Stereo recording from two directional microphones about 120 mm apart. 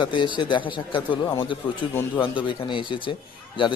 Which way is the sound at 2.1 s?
45° left (ahead or behind).